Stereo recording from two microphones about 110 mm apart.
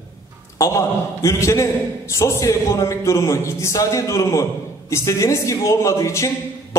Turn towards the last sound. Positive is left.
turn(degrees=25)  # may be behind; listen again after turning